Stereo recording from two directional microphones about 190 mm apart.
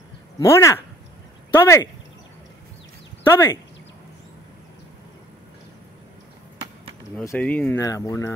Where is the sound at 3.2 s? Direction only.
10° left (ahead or behind).